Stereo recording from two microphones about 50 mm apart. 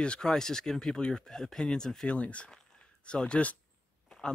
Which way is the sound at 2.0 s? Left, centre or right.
Left.